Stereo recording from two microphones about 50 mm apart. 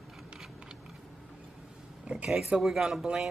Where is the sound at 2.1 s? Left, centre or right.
Right.